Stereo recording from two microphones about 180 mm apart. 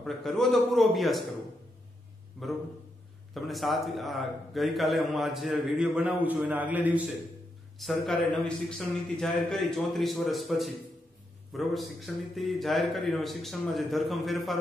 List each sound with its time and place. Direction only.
0.0 s a man's voice: centre (ahead or behind)
3.3 s a man's voice: centre (ahead or behind)